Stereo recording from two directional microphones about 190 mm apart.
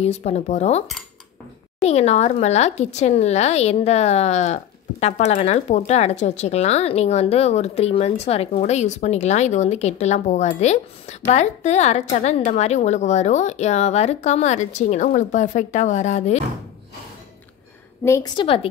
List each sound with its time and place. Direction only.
0.0 s speech: 35° left (ahead or behind)
18.0 s a woman's voice: 15° left (ahead or behind)